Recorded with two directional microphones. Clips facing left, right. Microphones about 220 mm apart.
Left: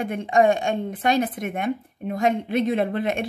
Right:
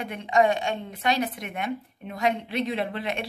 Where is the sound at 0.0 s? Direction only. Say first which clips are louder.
Left 3 dB; 50° left (ahead or behind).